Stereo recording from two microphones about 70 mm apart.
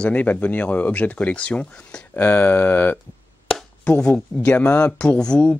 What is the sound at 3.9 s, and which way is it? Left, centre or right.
Speech, centre.